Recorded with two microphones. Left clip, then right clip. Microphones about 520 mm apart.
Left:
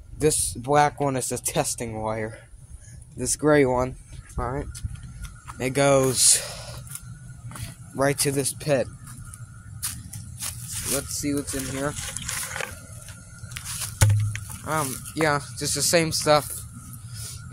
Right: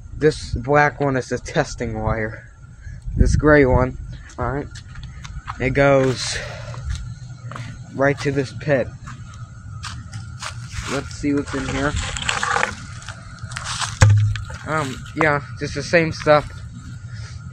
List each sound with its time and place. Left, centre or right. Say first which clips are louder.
0.2 s speech: right 5 dB; left
7.9 s speech: right 4 dB; left
11.0 s speech: right 6 dB; left
13.6 s a sound: right 10 dB; left
14.7 s speech: right 4 dB; left